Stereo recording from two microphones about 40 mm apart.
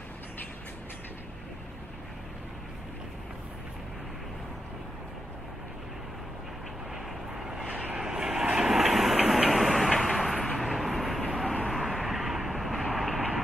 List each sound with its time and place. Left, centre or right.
7.3 s vehicle: centre
7.6 s vehicle: right
8.0 s vehicle: centre